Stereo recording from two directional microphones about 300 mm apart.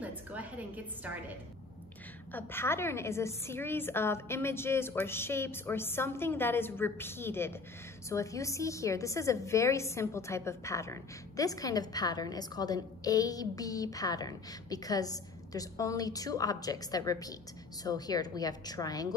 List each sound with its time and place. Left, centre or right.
0.0 s a woman's voice: centre
2.3 s a woman's voice: centre